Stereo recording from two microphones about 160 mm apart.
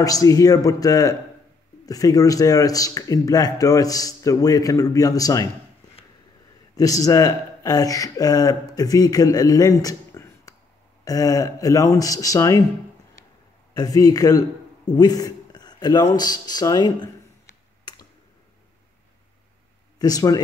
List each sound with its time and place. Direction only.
0.0 s a man's voice: 20° left (ahead or behind)
6.7 s a man's voice: 20° left (ahead or behind)
13.7 s a man's voice: 25° left (ahead or behind)
14.9 s a sound: 25° left (ahead or behind)
20.0 s a man's voice: 25° left (ahead or behind)